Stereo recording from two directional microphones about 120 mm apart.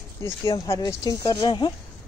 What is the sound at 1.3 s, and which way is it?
Speech, 40° left (ahead or behind).